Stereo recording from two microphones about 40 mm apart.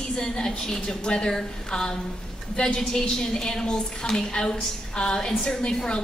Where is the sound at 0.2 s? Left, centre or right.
Centre.